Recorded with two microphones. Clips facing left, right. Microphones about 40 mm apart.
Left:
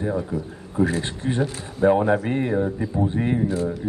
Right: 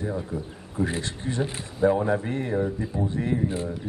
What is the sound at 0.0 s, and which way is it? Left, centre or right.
A man's voice, left.